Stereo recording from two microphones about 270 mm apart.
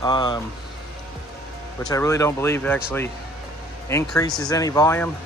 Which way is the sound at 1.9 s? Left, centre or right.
Centre.